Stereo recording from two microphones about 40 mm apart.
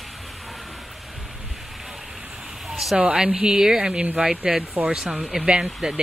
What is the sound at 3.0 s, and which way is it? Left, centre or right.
Speech, right.